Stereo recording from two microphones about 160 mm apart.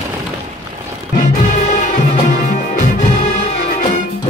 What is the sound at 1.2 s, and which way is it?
Music, 50° left (ahead or behind).